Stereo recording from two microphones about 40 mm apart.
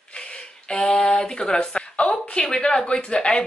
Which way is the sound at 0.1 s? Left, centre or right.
Left.